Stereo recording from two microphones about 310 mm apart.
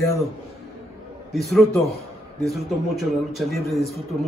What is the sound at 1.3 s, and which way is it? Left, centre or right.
Speech, centre.